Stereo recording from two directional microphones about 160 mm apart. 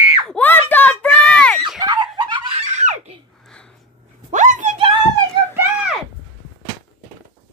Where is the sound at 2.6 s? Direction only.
45° right (ahead or behind).